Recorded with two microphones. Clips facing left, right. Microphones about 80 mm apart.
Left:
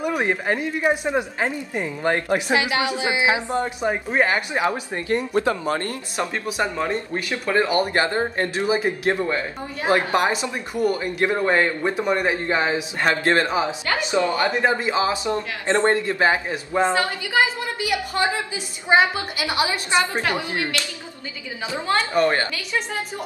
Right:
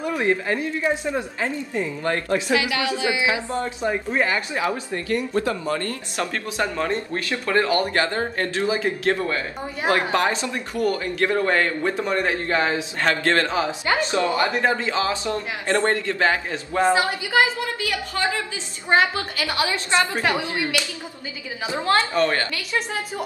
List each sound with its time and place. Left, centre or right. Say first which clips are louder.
0.0 s speech: even; left
16.9 s a woman's voice: right 2 dB; centre
17.7 s speech: left 3 dB; left
20.2 s a woman's voice: right 1 dB; centre
22.2 s speech: left 2 dB; centre